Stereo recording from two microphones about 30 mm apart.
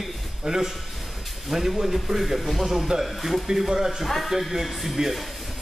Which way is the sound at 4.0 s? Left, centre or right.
Centre.